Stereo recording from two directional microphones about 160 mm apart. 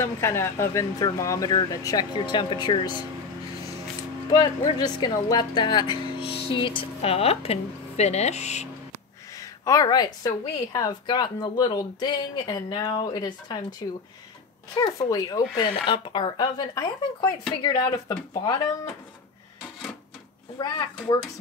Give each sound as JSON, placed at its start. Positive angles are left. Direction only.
{"t": 0.0, "sound": "speech", "side_deg": 15}
{"t": 4.3, "sound": "speech", "side_deg": 25}
{"t": 9.4, "sound": "speech", "side_deg": 20}
{"t": 14.8, "sound": "speech", "side_deg": 25}
{"t": 20.5, "sound": "speech", "side_deg": 25}